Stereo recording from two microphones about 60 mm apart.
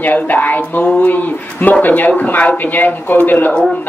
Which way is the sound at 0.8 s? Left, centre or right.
Centre.